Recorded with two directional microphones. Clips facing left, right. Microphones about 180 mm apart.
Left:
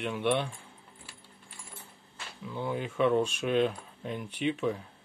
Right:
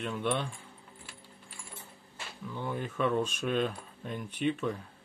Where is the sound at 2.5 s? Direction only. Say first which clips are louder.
Left 3 dB; 10° left (ahead or behind).